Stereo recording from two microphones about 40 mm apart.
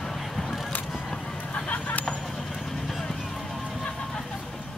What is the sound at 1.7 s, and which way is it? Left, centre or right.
Vehicle, left.